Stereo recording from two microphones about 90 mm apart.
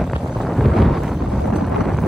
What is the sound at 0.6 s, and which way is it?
Wind noise, centre (ahead or behind).